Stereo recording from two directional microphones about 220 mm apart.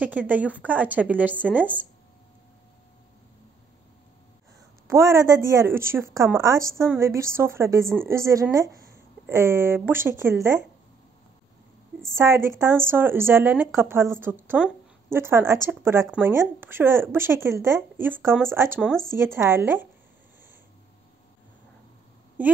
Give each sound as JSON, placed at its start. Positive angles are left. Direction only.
{"t": 0.0, "sound": "a woman's voice", "side_deg": -10}
{"t": 4.8, "sound": "a woman's voice", "side_deg": -15}
{"t": 12.0, "sound": "a woman's voice", "side_deg": -10}
{"t": 22.4, "sound": "a woman's voice", "side_deg": -10}